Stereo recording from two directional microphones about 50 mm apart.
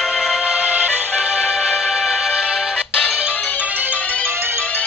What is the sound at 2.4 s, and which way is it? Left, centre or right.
Music, right.